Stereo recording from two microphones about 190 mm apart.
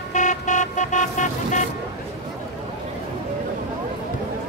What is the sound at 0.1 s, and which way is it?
Vehicle, 40° left (ahead or behind).